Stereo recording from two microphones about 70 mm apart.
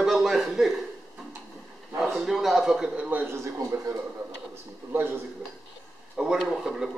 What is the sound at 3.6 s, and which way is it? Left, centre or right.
Speech, right.